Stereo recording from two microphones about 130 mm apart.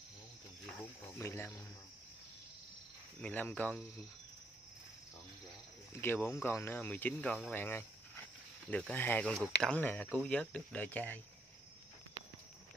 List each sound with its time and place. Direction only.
1.1 s speech: 20° left (ahead or behind)
3.2 s speech: 10° left (ahead or behind)
5.9 s speech: 15° left (ahead or behind)